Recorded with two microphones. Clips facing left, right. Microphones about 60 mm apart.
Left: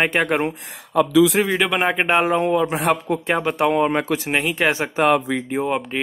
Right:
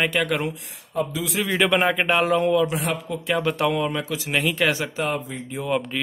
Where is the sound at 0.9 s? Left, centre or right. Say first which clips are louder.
Left 10 dB; left.